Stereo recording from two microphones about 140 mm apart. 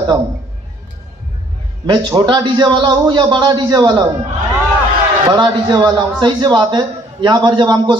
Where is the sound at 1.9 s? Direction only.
30° right (ahead or behind).